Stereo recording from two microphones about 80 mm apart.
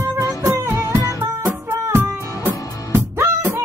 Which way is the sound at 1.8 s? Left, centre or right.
Right.